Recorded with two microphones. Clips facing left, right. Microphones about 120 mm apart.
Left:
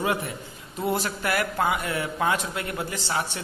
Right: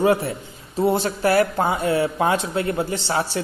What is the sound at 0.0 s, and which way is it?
A man's voice, 35° right (ahead or behind).